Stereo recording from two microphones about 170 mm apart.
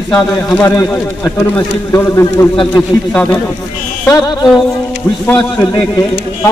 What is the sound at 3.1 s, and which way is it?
Speech, 10° left (ahead or behind).